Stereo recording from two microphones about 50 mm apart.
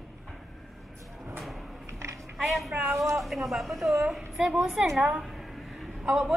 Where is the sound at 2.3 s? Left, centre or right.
Centre.